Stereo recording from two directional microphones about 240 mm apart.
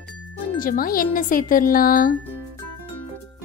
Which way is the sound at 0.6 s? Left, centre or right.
Left.